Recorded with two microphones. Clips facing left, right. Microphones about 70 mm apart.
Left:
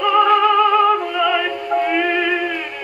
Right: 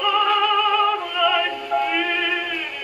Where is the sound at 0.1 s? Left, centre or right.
Left.